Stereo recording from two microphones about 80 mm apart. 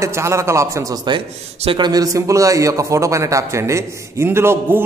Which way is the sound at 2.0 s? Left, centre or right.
Right.